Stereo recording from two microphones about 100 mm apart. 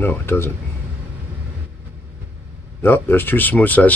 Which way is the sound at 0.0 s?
20° left (ahead or behind).